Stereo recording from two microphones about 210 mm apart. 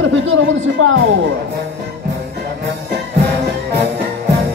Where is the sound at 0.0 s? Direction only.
70° right (ahead or behind).